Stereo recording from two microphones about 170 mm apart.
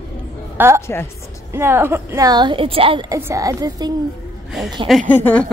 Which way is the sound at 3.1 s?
20° right (ahead or behind).